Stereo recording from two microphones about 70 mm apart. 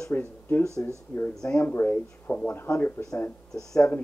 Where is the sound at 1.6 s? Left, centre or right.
Left.